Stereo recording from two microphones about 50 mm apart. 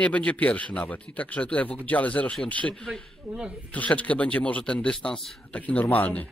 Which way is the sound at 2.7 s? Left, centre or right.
Centre.